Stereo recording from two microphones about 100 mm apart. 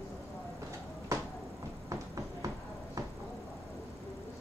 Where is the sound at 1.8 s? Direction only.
35° right (ahead or behind).